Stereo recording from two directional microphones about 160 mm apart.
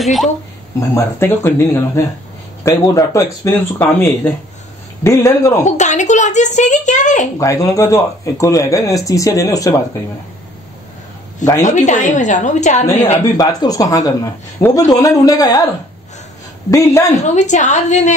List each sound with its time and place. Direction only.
0.0 s speech: centre (ahead or behind)
0.7 s speech: 15° left (ahead or behind)
5.6 s a child's voice: 50° left (ahead or behind)
7.3 s speech: 20° left (ahead or behind)
11.6 s a child's voice: 50° left (ahead or behind)
13.2 s speech: 20° left (ahead or behind)
16.7 s speech: 20° left (ahead or behind)
17.2 s a child's voice: 50° left (ahead or behind)